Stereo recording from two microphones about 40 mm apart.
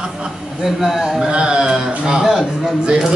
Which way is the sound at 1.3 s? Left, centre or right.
Centre.